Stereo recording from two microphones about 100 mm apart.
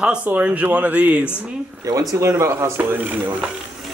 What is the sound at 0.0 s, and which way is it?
Speech, 10° right (ahead or behind).